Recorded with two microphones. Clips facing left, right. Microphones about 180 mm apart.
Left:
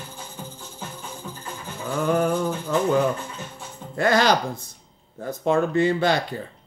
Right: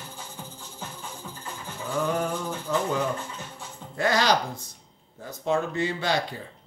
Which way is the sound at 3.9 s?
55° left (ahead or behind).